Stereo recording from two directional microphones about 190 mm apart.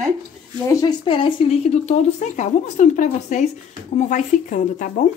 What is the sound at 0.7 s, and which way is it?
A woman's voice, 25° left (ahead or behind).